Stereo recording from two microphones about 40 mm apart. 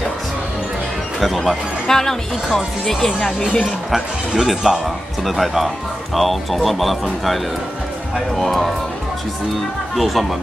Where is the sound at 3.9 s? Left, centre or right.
Centre.